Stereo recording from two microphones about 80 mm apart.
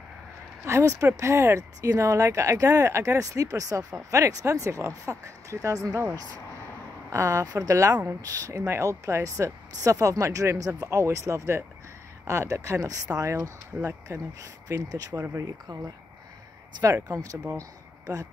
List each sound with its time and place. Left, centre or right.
0.7 s speech: right
17.1 s speech: right
17.6 s a sound: right